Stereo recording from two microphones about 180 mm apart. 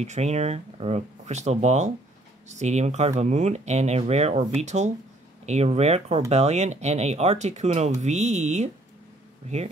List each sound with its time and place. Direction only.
0.0 s speech: 40° right (ahead or behind)